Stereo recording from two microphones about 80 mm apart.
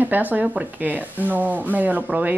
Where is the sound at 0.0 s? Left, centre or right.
Right.